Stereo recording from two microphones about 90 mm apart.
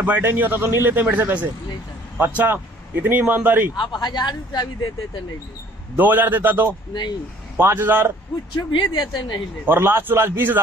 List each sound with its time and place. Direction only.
0.0 s speech: 20° right (ahead or behind)
3.7 s speech: 60° left (ahead or behind)
5.9 s speech: 20° right (ahead or behind)
8.5 s speech: 55° left (ahead or behind)
9.7 s speech: 25° right (ahead or behind)